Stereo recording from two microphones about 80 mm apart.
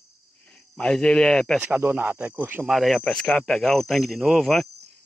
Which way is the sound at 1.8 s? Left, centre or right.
Right.